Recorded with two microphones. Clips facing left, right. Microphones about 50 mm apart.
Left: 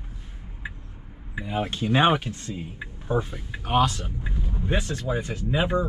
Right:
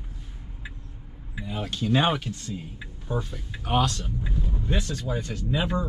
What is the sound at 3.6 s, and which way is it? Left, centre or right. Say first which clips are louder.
Speech: left 2 dB; centre.